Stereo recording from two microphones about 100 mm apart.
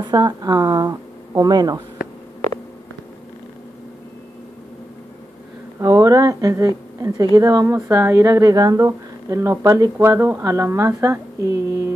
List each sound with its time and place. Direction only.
0.0 s speech: 45° right (ahead or behind)
5.8 s speech: 35° right (ahead or behind)